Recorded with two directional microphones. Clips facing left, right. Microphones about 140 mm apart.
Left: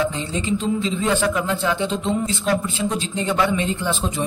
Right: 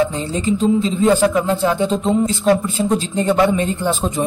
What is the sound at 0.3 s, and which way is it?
Speech, 40° right (ahead or behind).